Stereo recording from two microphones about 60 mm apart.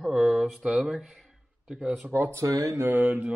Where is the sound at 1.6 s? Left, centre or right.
Centre.